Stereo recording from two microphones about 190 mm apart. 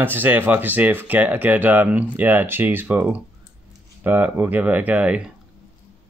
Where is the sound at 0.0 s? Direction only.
10° right (ahead or behind).